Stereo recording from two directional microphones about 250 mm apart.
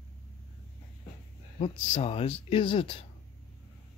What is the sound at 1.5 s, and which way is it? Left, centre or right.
Speech, left.